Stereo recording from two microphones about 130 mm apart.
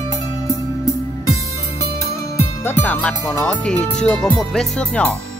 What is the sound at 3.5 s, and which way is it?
Speech, 10° left (ahead or behind).